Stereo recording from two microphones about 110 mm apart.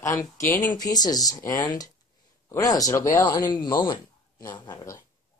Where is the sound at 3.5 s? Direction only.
40° left (ahead or behind).